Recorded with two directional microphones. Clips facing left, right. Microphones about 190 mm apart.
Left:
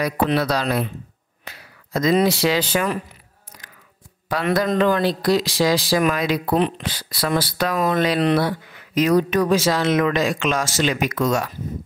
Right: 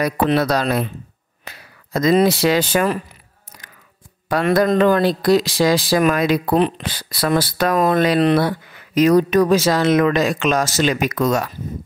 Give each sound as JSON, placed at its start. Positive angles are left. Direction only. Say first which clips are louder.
{"t": 0.0, "sound": "speech", "louder": "right 3 dB", "side_deg": -50}
{"t": 1.4, "sound": "a sound", "louder": "right 1 dB", "side_deg": -50}
{"t": 2.2, "sound": "speech", "louder": "right 3 dB", "side_deg": -50}
{"t": 4.3, "sound": "speech", "louder": "right 4 dB", "side_deg": -50}